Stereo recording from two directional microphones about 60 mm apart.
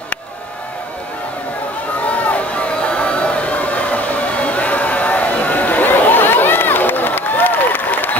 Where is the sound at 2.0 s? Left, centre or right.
Left.